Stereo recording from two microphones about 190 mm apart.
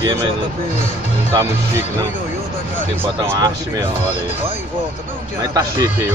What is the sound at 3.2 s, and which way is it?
Speech, 20° right (ahead or behind).